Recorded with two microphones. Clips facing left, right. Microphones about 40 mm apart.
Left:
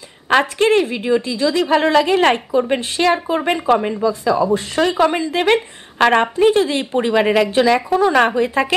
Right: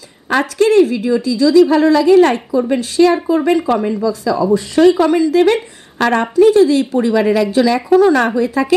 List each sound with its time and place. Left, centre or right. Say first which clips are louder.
0.3 s a woman's voice: right 1 dB; left